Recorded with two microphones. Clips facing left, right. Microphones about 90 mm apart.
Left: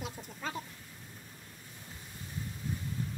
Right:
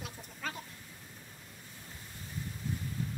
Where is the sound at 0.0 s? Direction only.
20° left (ahead or behind).